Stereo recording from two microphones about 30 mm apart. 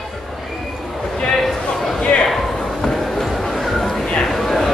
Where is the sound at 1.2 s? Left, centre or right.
Centre.